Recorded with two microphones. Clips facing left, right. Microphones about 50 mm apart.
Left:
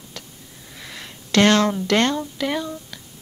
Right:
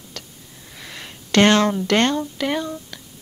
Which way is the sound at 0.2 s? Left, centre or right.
Centre.